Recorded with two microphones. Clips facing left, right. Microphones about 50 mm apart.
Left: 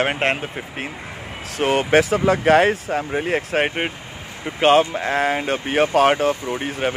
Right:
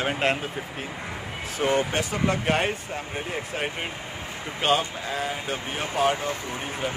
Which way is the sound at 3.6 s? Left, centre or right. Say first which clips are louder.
Left 9 dB; left.